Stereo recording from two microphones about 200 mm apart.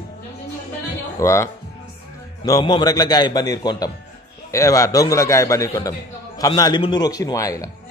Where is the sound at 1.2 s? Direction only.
15° left (ahead or behind).